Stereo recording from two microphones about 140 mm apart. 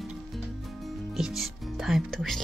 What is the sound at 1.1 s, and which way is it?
Music, centre (ahead or behind).